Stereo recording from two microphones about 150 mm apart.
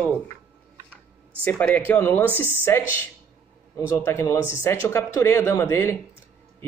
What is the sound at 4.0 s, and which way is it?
Speech, 15° left (ahead or behind).